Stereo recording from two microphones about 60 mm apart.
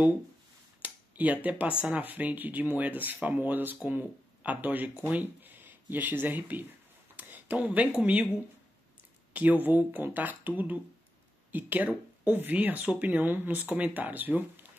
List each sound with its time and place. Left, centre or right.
0.8 s a sound: right
1.8 s speech: right
9.3 s speech: right